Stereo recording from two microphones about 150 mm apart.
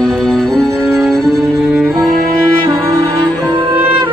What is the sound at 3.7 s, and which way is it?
Music, 15° right (ahead or behind).